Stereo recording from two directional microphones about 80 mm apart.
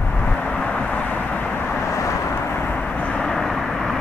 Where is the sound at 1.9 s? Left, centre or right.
Left.